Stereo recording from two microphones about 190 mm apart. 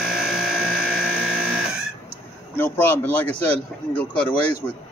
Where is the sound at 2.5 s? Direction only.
10° left (ahead or behind).